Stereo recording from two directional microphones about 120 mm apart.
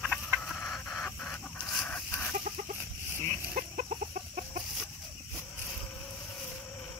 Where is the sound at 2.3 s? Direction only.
90° right.